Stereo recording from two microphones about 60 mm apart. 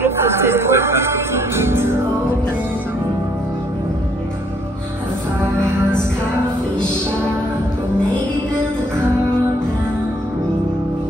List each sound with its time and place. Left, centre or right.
0.0 s music: right